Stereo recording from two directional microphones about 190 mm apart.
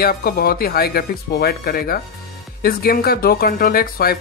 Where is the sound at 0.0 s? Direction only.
50° left (ahead or behind).